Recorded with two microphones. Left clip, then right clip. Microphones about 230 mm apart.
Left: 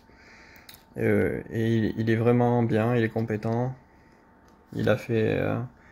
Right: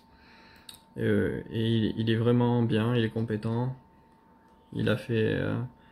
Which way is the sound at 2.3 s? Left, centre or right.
Centre.